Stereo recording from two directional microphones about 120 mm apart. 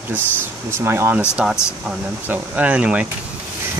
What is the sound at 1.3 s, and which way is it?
Speech, 5° right (ahead or behind).